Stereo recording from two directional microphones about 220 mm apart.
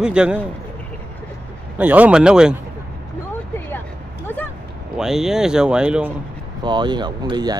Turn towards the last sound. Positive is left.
turn(degrees=-20)  # may be behind; listen again after turning